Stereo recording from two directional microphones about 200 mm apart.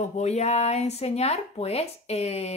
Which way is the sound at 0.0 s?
35° left (ahead or behind).